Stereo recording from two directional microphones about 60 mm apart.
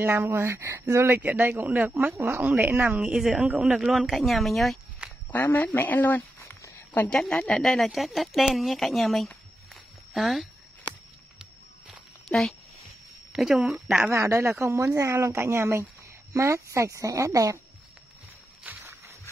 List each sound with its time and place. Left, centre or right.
0.0 s speech: right
1.6 s speech: right
2.9 s a woman's voice: centre
5.3 s speech: left
7.1 s speech: centre
7.6 s speech: centre
12.3 s speech: centre
13.3 s speech: centre
14.1 s speech: right
15.0 s speech: right
18.6 s a sound: right